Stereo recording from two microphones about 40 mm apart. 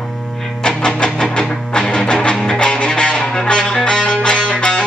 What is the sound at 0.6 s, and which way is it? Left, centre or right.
Music, centre.